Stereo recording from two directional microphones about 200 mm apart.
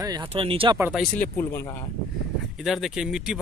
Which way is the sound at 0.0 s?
20° right (ahead or behind).